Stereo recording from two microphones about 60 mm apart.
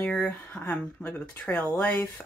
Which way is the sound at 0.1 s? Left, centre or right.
Left.